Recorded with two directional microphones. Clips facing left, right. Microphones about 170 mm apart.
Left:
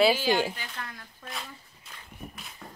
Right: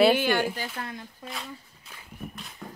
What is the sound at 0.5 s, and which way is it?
Speech, 30° right (ahead or behind).